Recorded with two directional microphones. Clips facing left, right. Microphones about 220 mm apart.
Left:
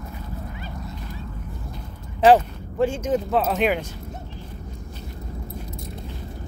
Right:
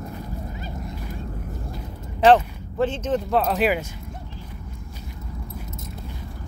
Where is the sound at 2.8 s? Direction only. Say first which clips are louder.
Left 2 dB; 10° left (ahead or behind); by 3.9 s 5° right (ahead or behind).